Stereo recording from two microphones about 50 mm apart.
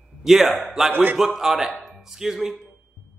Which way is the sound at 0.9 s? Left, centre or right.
Right.